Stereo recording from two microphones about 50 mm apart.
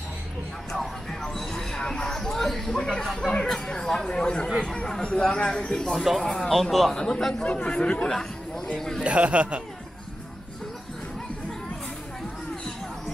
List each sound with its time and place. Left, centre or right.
0.7 s speech: centre
6.5 s speech: centre
6.9 s speech: centre
8.1 s speech: centre
9.0 s speech: right